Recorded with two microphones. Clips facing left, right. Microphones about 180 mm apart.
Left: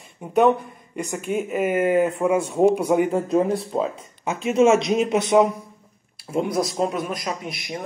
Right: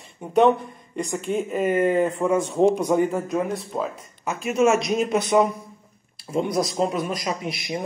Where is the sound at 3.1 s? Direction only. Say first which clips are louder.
Left 4 dB; 30° left (ahead or behind).